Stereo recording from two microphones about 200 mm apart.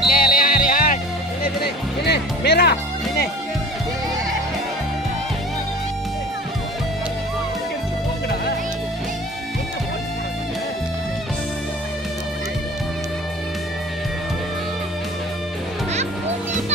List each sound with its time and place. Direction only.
0.1 s music: 45° left (ahead or behind)
1.4 s music: 55° left (ahead or behind)